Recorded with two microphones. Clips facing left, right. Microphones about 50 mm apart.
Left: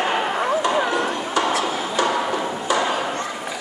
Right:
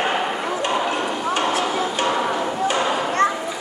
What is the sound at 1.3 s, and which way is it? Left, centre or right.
Music, right.